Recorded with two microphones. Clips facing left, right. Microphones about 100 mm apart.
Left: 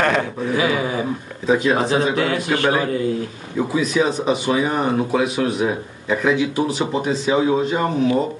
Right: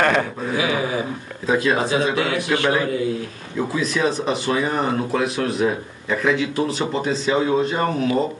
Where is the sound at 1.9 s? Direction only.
40° left (ahead or behind).